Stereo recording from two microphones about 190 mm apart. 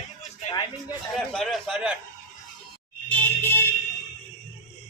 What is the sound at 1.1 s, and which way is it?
Speech, centre (ahead or behind).